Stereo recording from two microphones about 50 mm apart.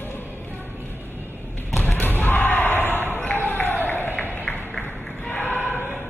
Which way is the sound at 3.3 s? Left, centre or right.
Left.